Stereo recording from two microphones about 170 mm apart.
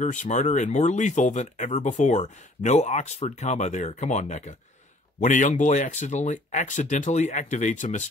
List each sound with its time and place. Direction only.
0.0 s speech: 45° left (ahead or behind)